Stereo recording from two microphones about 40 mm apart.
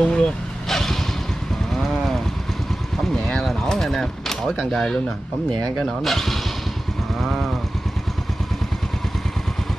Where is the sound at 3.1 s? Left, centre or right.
Left.